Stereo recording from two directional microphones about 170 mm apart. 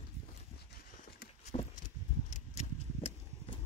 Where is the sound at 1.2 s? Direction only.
65° left (ahead or behind).